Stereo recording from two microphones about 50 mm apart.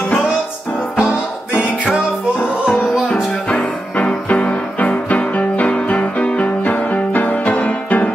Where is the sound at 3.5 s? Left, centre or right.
Left.